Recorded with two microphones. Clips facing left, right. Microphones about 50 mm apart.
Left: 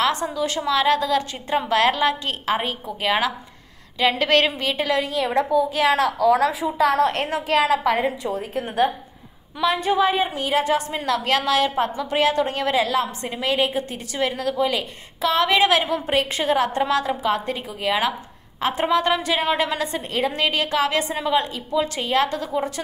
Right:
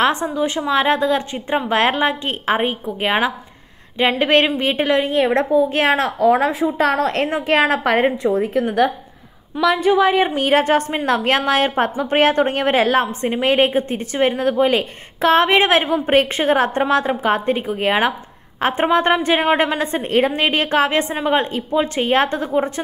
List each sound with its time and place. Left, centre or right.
0.0 s a woman's voice: right
9.9 s a woman's voice: right